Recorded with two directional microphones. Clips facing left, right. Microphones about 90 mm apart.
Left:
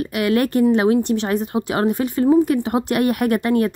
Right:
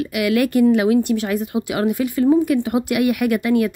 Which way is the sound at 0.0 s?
35° left (ahead or behind).